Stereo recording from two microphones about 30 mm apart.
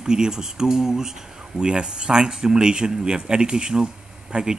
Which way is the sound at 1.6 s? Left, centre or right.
Right.